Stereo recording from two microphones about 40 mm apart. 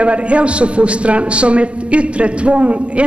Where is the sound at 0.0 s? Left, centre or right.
Right.